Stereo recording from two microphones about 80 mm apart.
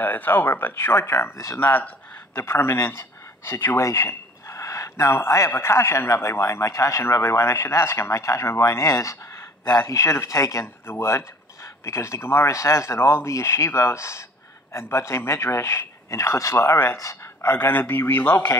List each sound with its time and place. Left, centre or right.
0.0 s speech: left
1.6 s speech: left
2.3 s speech: left
3.8 s a sound: left
5.5 s a man's voice: left